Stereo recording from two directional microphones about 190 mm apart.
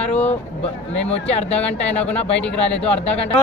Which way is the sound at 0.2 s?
35° left (ahead or behind).